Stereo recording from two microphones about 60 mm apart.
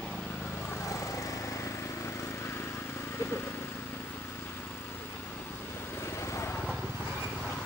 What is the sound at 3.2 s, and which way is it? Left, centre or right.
Vehicle, left.